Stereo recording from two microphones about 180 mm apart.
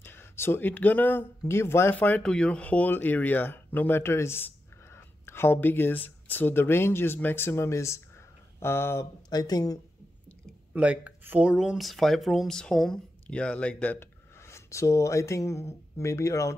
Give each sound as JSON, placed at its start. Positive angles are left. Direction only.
{"t": 0.0, "sound": "speech", "side_deg": 10}
{"t": 4.9, "sound": "a sound", "side_deg": 15}
{"t": 6.2, "sound": "speech", "side_deg": 10}
{"t": 10.7, "sound": "speech", "side_deg": -5}